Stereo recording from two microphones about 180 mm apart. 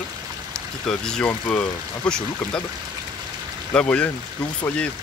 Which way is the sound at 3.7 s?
5° left (ahead or behind).